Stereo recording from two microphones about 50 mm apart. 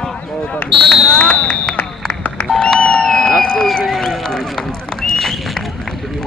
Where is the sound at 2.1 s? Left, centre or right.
Left.